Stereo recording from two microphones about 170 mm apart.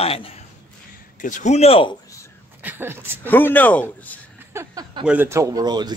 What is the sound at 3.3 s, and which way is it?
Speech, 10° left (ahead or behind).